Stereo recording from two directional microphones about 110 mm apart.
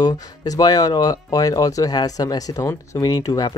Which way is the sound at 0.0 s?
35° left (ahead or behind).